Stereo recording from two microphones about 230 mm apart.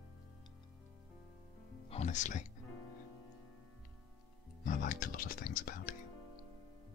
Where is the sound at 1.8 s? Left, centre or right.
Left.